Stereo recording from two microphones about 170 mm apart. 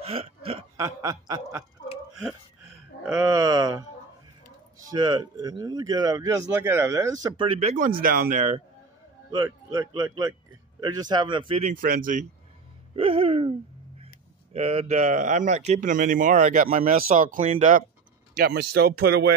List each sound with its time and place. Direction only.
0.0 s hiccup: 35° right (ahead or behind)
0.7 s speech: 20° right (ahead or behind)
3.2 s a sound: 20° right (ahead or behind)
4.9 s a sound: 25° right (ahead or behind)
6.5 s speech: 15° right (ahead or behind); by 7.7 s 35° right (ahead or behind)
7.7 s speech: 55° right (ahead or behind)
9.3 s speech: 20° right (ahead or behind)
11.7 s speech: 55° right (ahead or behind)
12.9 s a sound: 35° right (ahead or behind)
14.0 s speech: 35° right (ahead or behind)
18.4 s speech: 65° right (ahead or behind)